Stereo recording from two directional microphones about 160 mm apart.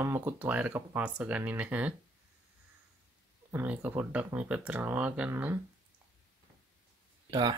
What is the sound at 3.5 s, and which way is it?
Speech, 10° right (ahead or behind).